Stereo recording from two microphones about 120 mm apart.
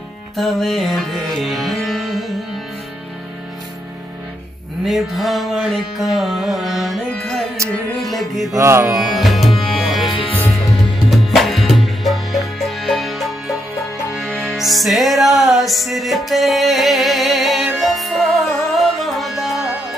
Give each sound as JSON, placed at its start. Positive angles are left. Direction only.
{"t": 0.4, "sound": "music", "side_deg": 0}
{"t": 4.8, "sound": "music", "side_deg": 0}
{"t": 8.5, "sound": "music", "side_deg": -20}
{"t": 8.9, "sound": "music", "side_deg": 0}
{"t": 10.1, "sound": "music", "side_deg": 50}
{"t": 11.1, "sound": "music", "side_deg": 0}